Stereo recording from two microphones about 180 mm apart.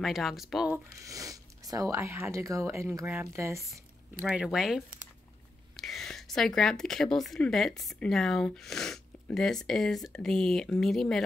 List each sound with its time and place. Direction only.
0.0 s a woman's voice: centre (ahead or behind)
1.0 s speech: 20° right (ahead or behind)
4.3 s a woman's voice: 5° right (ahead or behind)